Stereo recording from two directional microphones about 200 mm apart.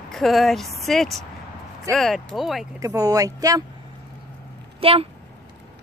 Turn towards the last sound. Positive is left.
turn(degrees=-30)  # may be behind; listen again after turning